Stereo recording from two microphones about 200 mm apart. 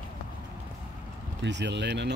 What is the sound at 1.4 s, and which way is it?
Speech, 60° right (ahead or behind).